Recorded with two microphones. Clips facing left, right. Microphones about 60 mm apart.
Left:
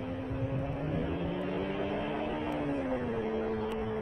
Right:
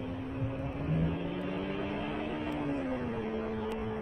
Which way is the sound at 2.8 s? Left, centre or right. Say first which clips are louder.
Left 2 dB; centre.